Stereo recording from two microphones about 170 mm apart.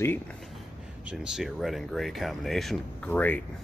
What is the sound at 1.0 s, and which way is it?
Speech, 5° right (ahead or behind).